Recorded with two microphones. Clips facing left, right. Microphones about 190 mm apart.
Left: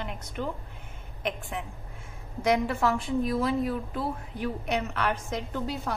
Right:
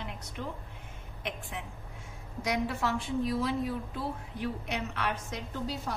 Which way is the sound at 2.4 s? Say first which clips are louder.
Left 6 dB; 55° left (ahead or behind).